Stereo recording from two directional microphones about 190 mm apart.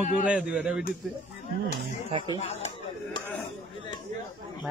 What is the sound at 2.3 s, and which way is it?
Speech, 35° left (ahead or behind).